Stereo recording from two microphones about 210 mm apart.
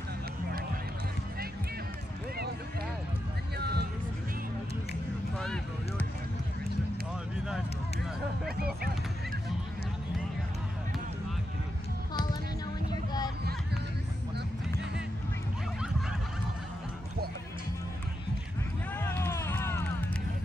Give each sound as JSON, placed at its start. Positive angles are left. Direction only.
{"t": 3.5, "sound": "music", "side_deg": -50}
{"t": 5.4, "sound": "a sound", "side_deg": 5}
{"t": 18.9, "sound": "music", "side_deg": 10}